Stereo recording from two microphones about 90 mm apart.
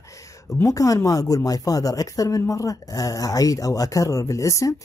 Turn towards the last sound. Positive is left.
turn(degrees=35)  # may be behind; listen again after turning